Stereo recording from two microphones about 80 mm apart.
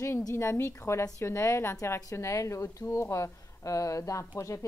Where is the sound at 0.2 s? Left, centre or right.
Left.